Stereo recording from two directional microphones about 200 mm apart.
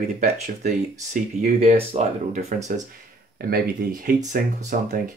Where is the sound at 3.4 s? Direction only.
45° right (ahead or behind).